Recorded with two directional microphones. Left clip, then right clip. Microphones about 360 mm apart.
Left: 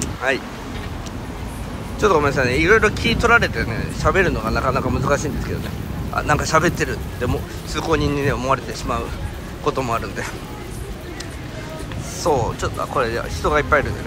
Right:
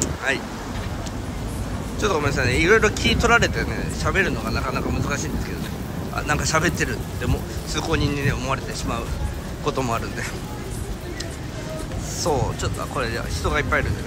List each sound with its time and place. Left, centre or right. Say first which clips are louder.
0.0 s vehicle: left 3 dB; centre
2.0 s speech: left 6 dB; centre
12.2 s speech: left 4 dB; centre